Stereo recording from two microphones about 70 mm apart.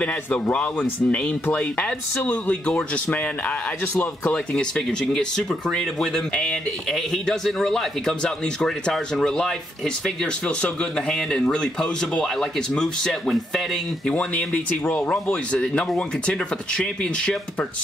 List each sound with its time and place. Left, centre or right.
0.0 s speech: centre
14.0 s speech: centre